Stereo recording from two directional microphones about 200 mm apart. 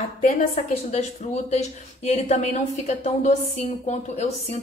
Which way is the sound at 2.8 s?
35° left (ahead or behind).